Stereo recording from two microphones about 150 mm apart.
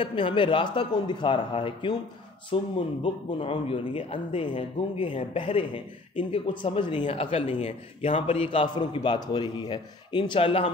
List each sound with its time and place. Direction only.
0.0 s speech: 35° left (ahead or behind)